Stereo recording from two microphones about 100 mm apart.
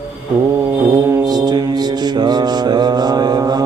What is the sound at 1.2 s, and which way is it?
Mantra, 45° right (ahead or behind).